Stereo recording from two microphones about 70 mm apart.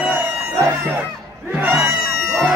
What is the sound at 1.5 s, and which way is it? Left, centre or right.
Music, right.